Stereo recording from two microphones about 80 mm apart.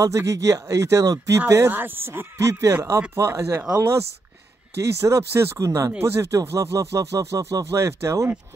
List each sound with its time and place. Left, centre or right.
0.0 s speech: right
1.7 s speech: right
4.7 s speech: right